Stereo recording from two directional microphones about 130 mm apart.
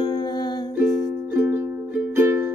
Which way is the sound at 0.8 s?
20° right (ahead or behind).